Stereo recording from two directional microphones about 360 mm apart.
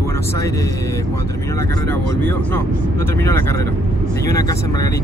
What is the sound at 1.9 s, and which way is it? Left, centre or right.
Speech, centre.